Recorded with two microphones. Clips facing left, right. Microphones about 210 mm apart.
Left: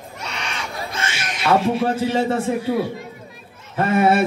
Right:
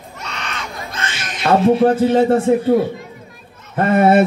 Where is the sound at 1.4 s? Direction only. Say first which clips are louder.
Right 6 dB; 50° right (ahead or behind).